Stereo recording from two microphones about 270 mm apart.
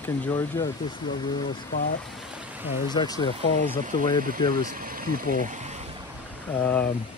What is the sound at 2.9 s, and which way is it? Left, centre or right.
Speech, centre.